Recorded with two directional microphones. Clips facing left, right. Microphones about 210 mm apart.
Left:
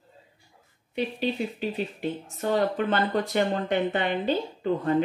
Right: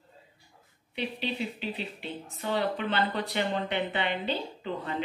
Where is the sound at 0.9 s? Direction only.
45° left (ahead or behind).